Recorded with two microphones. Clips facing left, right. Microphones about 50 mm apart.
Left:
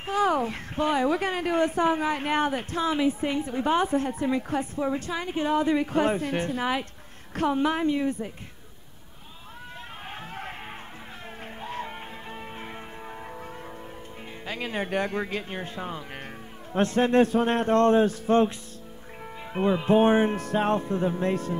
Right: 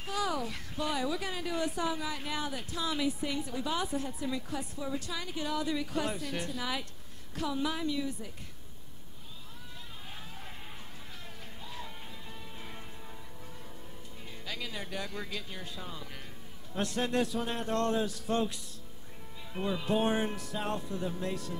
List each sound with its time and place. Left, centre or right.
0.0 s a woman's voice: left
10.1 s music: left
11.6 s music: left
14.4 s a woman's voice: left
19.5 s a woman's voice: left